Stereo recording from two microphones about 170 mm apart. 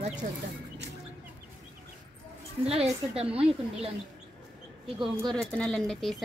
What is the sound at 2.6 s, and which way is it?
Speech, 35° right (ahead or behind).